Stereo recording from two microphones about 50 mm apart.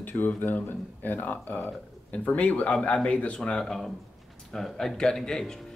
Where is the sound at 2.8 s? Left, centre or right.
Left.